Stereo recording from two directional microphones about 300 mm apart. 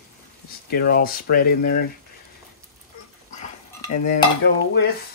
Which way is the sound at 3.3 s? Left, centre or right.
Left.